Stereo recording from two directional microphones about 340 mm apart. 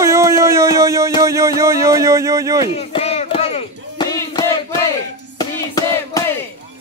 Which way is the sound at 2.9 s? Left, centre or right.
Centre.